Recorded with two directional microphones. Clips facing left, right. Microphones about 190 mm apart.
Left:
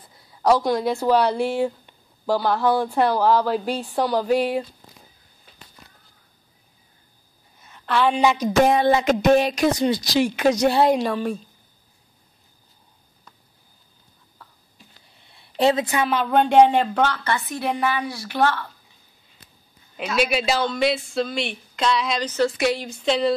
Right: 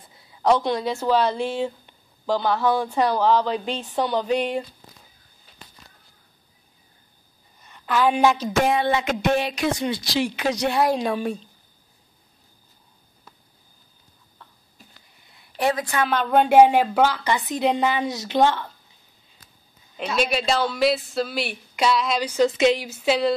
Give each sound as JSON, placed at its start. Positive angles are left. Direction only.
{"t": 0.4, "sound": "speech", "side_deg": 5}
{"t": 7.6, "sound": "a woman's voice", "side_deg": 0}
{"t": 8.6, "sound": "speech", "side_deg": 40}
{"t": 15.2, "sound": "a sound", "side_deg": 25}
{"t": 16.0, "sound": "speech", "side_deg": 5}
{"t": 16.3, "sound": "a woman's voice", "side_deg": -5}
{"t": 20.2, "sound": "a woman's voice", "side_deg": 5}
{"t": 22.8, "sound": "speech", "side_deg": -5}